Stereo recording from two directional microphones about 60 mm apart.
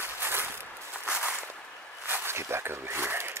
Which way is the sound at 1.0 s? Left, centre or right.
Right.